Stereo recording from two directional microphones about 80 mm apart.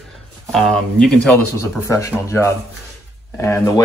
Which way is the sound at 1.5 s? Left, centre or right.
Left.